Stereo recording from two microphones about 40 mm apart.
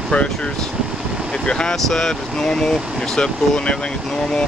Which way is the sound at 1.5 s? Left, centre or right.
Left.